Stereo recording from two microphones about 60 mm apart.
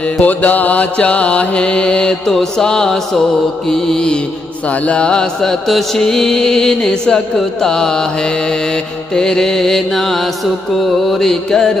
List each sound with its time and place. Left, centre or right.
0.2 s music: left
2.3 s mantra: centre